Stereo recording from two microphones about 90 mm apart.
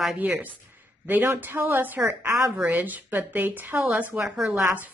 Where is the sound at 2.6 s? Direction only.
20° right (ahead or behind).